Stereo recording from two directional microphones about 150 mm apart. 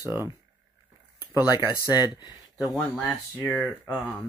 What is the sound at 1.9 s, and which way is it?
Speech, 25° left (ahead or behind).